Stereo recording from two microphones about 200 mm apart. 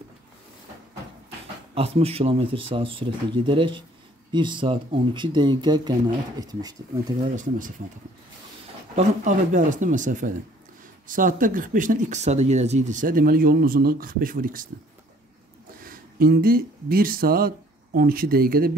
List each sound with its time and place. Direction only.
1.8 s speech: 30° right (ahead or behind)
7.3 s speech: 40° right (ahead or behind)
8.9 s speech: 40° right (ahead or behind)
15.8 s speech: 45° right (ahead or behind)